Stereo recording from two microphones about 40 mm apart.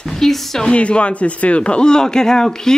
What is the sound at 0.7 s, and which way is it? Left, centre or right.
A man's voice, left.